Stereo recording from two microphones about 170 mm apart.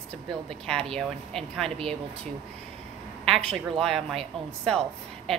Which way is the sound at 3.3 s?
35° right (ahead or behind).